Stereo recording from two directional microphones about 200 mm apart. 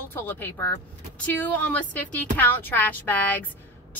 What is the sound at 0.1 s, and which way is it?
A woman's voice, 10° left (ahead or behind).